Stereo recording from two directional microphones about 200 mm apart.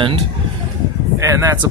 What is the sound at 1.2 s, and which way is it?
Speech, 15° right (ahead or behind).